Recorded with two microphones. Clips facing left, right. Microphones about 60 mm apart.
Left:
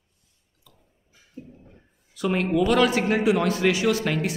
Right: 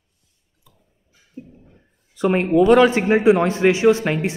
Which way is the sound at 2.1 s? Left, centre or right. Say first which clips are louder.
Right 6 dB; right.